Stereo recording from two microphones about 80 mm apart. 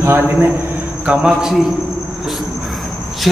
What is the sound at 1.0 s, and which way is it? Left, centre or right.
Speech, centre.